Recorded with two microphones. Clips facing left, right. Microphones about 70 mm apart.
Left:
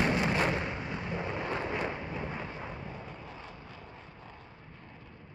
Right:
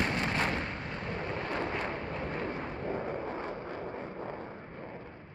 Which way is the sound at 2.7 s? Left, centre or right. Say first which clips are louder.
Right 8 dB; right.